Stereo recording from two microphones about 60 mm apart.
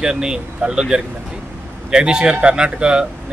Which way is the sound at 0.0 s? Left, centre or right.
Centre.